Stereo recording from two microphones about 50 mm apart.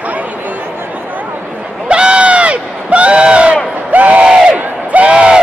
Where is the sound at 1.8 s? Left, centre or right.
Right.